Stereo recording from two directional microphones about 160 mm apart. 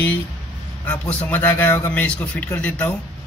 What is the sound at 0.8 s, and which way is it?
A man's voice, 5° left (ahead or behind).